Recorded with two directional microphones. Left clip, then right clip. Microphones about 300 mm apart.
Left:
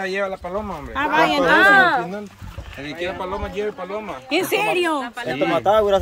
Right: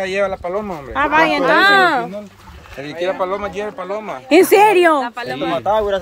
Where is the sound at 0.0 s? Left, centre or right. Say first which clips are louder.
Right 5 dB; centre.